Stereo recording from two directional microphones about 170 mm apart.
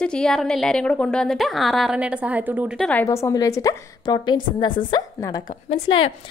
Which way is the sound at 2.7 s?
5° left (ahead or behind).